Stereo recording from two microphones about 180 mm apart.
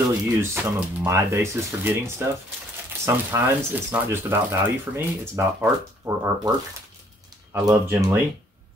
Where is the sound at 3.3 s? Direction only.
10° right (ahead or behind).